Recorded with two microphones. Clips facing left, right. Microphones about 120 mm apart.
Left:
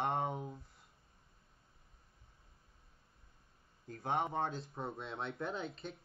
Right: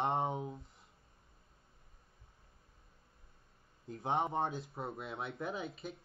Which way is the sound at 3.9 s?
20° right (ahead or behind).